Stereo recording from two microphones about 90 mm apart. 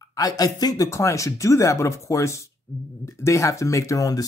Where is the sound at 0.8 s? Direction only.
35° left (ahead or behind).